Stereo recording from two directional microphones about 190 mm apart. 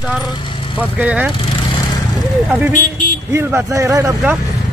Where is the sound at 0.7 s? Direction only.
5° right (ahead or behind).